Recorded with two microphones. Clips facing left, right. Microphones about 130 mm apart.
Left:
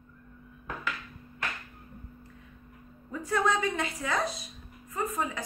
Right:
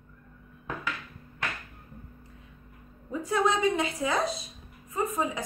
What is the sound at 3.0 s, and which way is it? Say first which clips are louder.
A woman's voice: right 2 dB; 15° right (ahead or behind).